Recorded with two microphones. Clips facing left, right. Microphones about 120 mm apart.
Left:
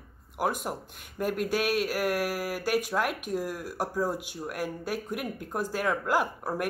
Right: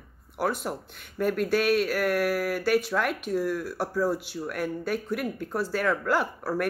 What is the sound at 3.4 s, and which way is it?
Speech, 45° left (ahead or behind).